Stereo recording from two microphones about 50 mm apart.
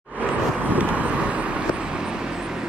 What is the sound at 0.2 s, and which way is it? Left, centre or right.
Vehicle, right.